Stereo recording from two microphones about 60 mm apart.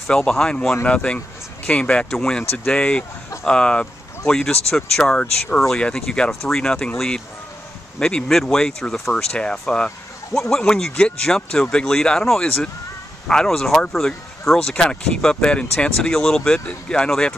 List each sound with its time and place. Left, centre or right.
0.1 s speech: centre
2.5 s speech: left
8.0 s speech: centre